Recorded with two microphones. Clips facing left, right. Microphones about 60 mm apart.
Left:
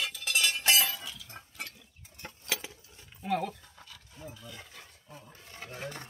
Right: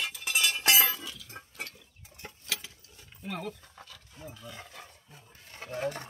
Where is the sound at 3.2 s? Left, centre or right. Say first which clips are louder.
Left 6 dB; left.